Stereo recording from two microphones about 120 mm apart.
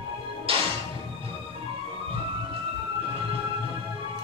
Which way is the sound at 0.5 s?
50° right (ahead or behind).